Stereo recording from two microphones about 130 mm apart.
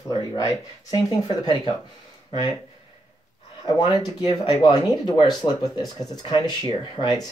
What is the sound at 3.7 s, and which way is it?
Speech, 35° left (ahead or behind).